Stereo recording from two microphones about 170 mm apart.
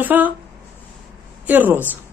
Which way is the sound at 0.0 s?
10° right (ahead or behind).